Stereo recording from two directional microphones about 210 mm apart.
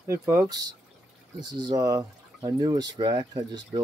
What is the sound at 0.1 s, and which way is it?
Speech, 10° right (ahead or behind).